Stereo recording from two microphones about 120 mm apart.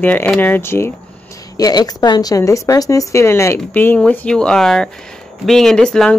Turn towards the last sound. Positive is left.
turn(degrees=5)  # may be behind; listen again after turning